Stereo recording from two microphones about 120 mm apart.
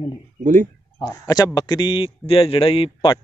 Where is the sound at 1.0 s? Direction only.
30° left (ahead or behind).